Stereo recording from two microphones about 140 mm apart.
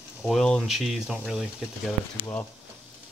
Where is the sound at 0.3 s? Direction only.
5° left (ahead or behind).